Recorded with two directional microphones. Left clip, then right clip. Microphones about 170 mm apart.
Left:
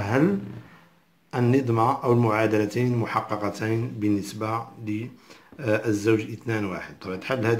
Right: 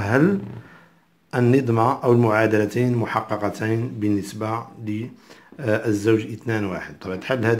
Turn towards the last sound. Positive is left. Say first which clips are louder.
# right 3 dB
turn(degrees=-25)  # may be behind; listen again after turning